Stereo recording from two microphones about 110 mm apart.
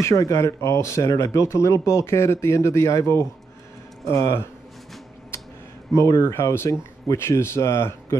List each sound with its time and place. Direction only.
0.0 s speech: 30° left (ahead or behind)
5.9 s speech: 25° left (ahead or behind)